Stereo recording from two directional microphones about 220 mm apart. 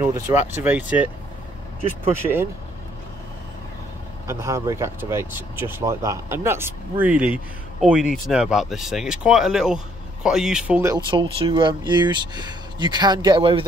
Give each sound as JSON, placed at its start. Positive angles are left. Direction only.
{"t": 0.0, "sound": "speech", "side_deg": -10}
{"t": 4.3, "sound": "speech", "side_deg": -10}